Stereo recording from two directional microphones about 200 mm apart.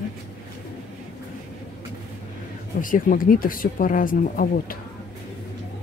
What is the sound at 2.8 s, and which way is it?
Speech, 45° left (ahead or behind).